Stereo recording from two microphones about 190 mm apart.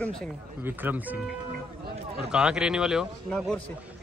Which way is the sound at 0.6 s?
10° right (ahead or behind).